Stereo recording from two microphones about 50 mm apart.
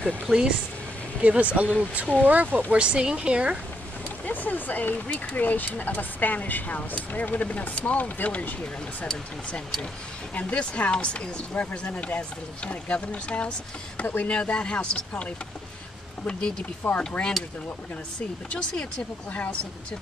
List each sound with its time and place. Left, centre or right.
0.3 s speech: right
2.7 s speech: right
4.3 s speech: left
10.3 s speech: left
16.3 s speech: centre
18.5 s speech: centre